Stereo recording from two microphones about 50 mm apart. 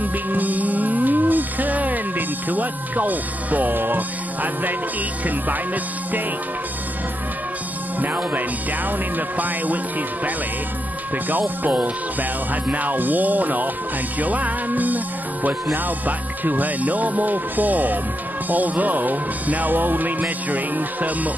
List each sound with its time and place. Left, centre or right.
0.0 s music: right
8.0 s speech: right
11.2 s speech: right